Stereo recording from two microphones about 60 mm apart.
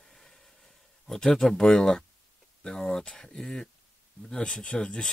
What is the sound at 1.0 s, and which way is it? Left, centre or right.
Speech, centre.